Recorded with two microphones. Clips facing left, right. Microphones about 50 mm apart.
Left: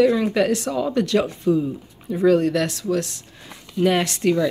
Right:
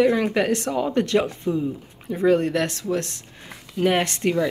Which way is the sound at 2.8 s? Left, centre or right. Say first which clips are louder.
Left 2 dB; right.